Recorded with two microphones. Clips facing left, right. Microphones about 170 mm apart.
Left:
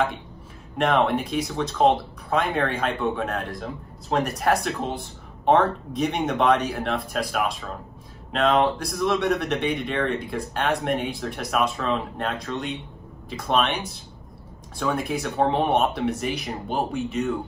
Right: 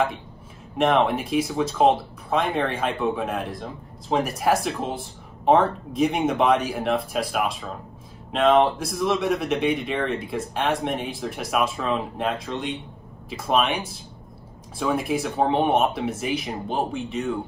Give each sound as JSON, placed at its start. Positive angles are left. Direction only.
{"t": 0.7, "sound": "speech", "side_deg": 0}
{"t": 14.8, "sound": "speech", "side_deg": -5}